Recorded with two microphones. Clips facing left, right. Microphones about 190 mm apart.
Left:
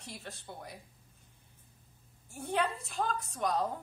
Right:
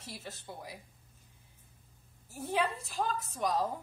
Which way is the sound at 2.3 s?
Centre (ahead or behind).